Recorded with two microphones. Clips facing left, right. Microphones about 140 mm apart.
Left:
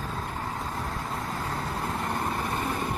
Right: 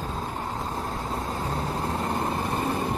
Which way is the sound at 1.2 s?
25° right (ahead or behind).